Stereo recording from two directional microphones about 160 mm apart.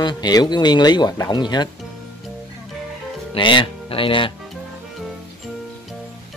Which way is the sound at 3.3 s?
30° left (ahead or behind).